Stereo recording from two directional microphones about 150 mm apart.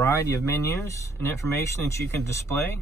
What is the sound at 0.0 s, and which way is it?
Speech, 20° left (ahead or behind).